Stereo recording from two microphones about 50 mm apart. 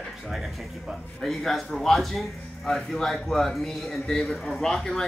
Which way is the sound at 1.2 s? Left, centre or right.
Centre.